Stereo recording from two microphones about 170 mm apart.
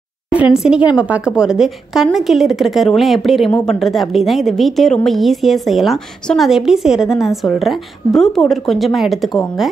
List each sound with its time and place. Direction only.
0.3 s a woman's voice: 5° right (ahead or behind)